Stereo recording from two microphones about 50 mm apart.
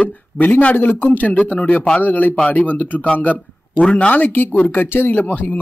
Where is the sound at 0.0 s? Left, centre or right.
Left.